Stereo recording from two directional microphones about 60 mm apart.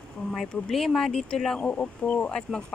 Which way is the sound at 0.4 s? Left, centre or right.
Centre.